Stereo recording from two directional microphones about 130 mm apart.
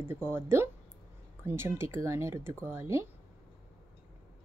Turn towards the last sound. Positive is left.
turn(degrees=-20)  # may be behind; listen again after turning